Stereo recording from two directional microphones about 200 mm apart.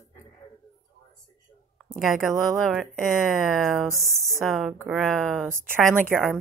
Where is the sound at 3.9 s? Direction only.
15° right (ahead or behind).